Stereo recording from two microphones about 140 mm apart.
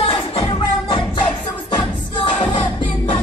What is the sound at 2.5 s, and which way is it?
Music, 35° left (ahead or behind).